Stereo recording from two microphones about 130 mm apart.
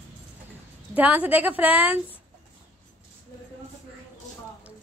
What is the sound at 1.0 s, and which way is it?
Speech, 10° right (ahead or behind).